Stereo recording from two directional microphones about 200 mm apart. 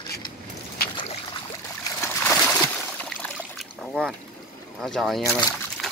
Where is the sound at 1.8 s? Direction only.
15° left (ahead or behind).